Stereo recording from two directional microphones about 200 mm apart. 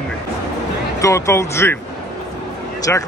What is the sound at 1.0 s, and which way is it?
Speech, 15° left (ahead or behind).